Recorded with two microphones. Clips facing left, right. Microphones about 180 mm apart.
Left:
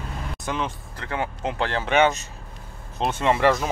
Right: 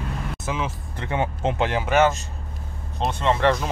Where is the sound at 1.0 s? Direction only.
25° right (ahead or behind).